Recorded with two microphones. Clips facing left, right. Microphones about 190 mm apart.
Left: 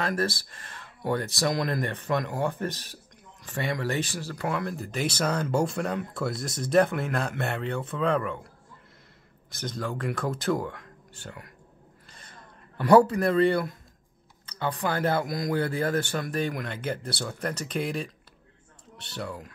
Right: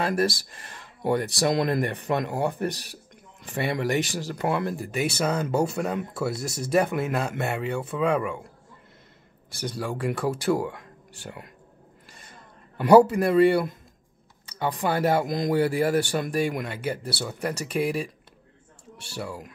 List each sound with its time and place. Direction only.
0.2 s speech: 15° right (ahead or behind)
4.7 s speech: 10° right (ahead or behind)
9.6 s speech: 10° right (ahead or behind)
12.7 s speech: 10° right (ahead or behind)